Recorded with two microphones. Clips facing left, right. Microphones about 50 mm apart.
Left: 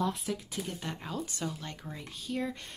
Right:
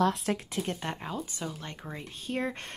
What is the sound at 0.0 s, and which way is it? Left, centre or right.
Speech, right.